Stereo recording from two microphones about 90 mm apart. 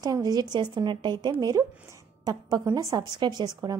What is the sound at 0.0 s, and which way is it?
A woman's voice, 45° right (ahead or behind).